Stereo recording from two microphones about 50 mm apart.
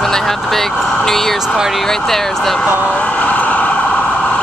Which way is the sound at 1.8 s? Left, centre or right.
Centre.